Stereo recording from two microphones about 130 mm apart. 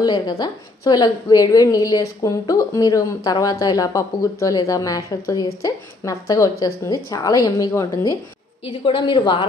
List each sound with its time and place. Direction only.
0.0 s a woman's voice: 30° left (ahead or behind)
8.6 s a woman's voice: 40° left (ahead or behind)